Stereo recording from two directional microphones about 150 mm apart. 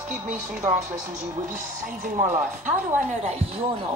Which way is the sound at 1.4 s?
60° right (ahead or behind).